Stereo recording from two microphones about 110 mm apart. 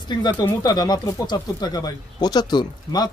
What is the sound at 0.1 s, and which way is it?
Speech, 40° left (ahead or behind).